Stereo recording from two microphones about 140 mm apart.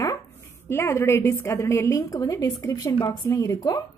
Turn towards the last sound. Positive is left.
turn(degrees=25)  # may be behind; listen again after turning